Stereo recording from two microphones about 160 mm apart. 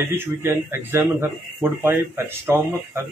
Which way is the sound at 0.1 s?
15° right (ahead or behind).